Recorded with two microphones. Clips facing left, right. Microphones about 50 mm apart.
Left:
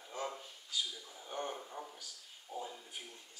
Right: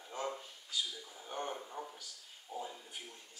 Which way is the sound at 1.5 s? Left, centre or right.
Centre.